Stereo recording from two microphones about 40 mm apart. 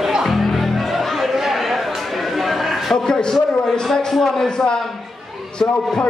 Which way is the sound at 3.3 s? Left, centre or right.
Centre.